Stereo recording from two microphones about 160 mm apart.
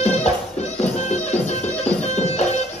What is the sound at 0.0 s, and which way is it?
Music, 40° left (ahead or behind).